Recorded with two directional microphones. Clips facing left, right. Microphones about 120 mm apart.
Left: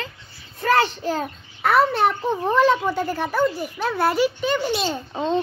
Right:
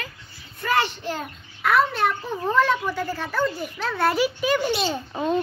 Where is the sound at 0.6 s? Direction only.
40° left (ahead or behind).